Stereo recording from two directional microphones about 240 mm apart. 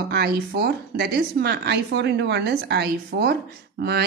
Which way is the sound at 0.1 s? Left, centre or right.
Right.